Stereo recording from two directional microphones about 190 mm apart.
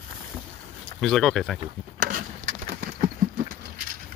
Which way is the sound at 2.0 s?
45° right (ahead or behind).